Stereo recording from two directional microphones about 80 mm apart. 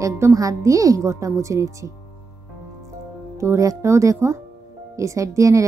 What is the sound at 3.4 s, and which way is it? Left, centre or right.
A woman's voice, right.